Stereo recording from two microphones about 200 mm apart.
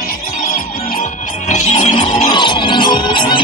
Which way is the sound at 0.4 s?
45° left (ahead or behind).